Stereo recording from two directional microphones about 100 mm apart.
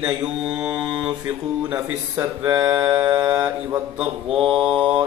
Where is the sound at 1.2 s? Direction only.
30° right (ahead or behind).